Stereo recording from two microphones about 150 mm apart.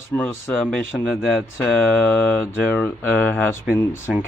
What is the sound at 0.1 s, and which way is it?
Speech, 10° left (ahead or behind).